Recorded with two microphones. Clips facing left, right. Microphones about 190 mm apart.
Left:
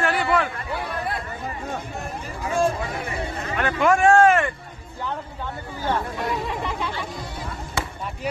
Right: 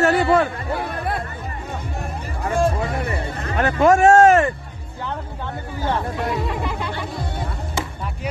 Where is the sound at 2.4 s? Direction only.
60° right (ahead or behind).